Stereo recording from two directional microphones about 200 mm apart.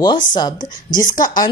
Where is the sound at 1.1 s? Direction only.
40° left (ahead or behind).